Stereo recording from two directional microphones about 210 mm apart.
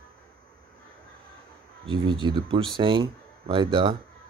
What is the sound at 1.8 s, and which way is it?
Speech, 20° right (ahead or behind).